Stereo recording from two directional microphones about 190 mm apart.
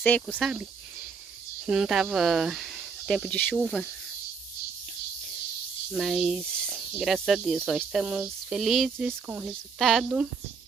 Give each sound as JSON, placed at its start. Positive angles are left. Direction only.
{"t": 0.0, "sound": "speech", "side_deg": 10}
{"t": 1.7, "sound": "speech", "side_deg": -5}
{"t": 5.9, "sound": "speech", "side_deg": 0}